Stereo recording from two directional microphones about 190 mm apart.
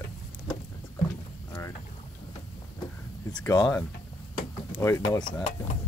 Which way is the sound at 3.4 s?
10° left (ahead or behind).